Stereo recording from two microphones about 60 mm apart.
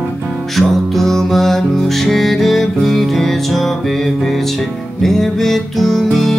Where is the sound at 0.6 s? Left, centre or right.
Centre.